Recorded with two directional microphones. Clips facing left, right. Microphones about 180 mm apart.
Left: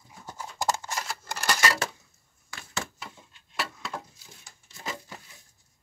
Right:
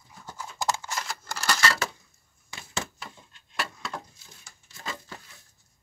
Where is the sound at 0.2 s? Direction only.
15° left (ahead or behind).